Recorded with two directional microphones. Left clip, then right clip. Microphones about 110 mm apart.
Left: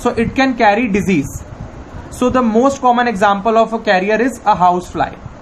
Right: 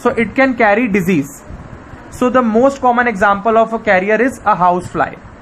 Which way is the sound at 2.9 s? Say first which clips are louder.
Right 1 dB; 25° right (ahead or behind).